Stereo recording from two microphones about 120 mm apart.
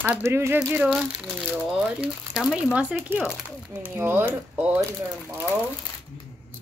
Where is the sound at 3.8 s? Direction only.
20° right (ahead or behind).